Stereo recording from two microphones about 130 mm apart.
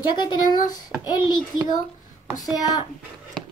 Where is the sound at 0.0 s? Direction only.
35° left (ahead or behind).